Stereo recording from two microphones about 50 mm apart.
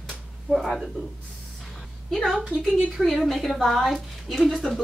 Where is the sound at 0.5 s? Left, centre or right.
Centre.